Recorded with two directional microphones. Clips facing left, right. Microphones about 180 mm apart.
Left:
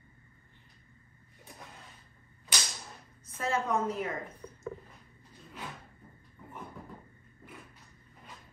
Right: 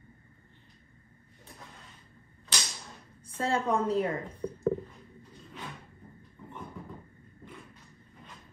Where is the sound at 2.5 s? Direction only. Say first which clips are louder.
Even; 10° left (ahead or behind).